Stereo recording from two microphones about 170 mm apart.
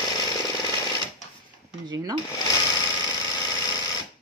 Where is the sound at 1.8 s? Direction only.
25° right (ahead or behind).